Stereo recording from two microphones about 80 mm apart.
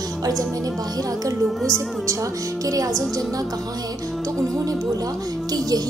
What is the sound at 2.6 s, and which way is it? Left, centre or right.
Speech, right.